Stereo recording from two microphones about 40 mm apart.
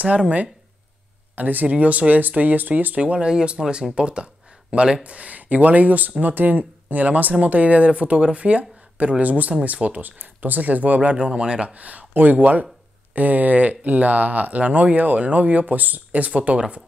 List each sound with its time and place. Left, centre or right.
0.0 s speech: right
1.3 s speech: right
3.0 s speech: right
11.7 s speech: right